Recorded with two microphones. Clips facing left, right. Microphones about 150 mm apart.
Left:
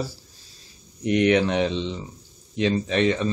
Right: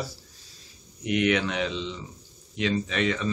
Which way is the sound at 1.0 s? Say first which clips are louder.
Left 5 dB; 35° left (ahead or behind).